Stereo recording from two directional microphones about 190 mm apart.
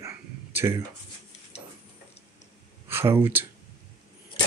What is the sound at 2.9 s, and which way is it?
Speech, 10° right (ahead or behind).